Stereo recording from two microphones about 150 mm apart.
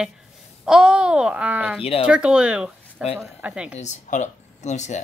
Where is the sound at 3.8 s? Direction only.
55° left (ahead or behind).